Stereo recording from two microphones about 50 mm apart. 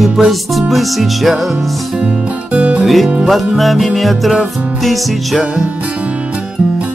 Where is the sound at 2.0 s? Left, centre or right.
Right.